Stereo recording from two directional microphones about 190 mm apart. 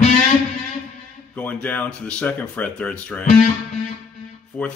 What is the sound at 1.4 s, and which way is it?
Speech, 10° left (ahead or behind).